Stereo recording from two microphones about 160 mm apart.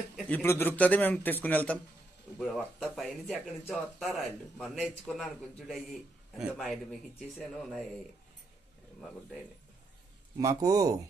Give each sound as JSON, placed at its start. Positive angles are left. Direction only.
{"t": 0.3, "sound": "a man's voice", "side_deg": 15}
{"t": 10.3, "sound": "speech", "side_deg": -20}